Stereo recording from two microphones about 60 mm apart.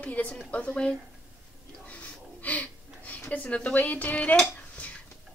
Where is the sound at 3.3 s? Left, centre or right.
Left.